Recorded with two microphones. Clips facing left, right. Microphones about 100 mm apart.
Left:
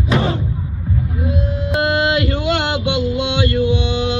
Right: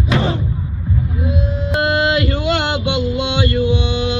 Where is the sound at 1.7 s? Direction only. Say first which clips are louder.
Even; centre (ahead or behind).